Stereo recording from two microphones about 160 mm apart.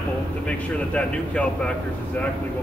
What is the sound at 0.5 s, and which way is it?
Speech, 5° left (ahead or behind).